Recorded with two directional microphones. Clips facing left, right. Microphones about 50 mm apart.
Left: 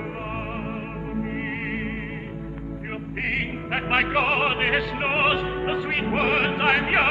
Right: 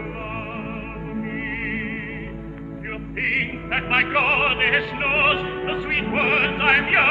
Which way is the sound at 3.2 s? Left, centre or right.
Centre.